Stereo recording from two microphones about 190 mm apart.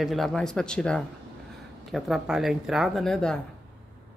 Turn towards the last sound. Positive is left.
turn(degrees=5)  # may be behind; listen again after turning